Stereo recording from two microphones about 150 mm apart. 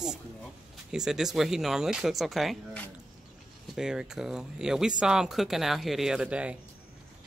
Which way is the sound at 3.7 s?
5° right (ahead or behind).